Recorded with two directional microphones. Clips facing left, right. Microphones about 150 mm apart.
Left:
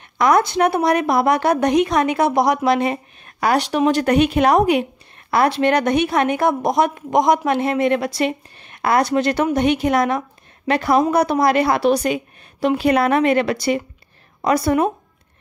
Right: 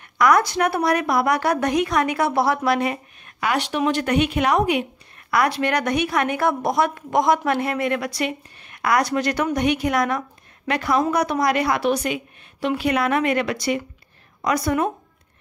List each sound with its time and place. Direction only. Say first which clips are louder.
0.2 s a woman's voice: left 2 dB; 25° left (ahead or behind)
3.3 s a woman's voice: left 5 dB; 40° left (ahead or behind)